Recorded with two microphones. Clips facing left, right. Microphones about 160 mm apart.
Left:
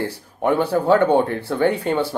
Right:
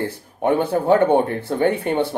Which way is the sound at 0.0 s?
20° right (ahead or behind).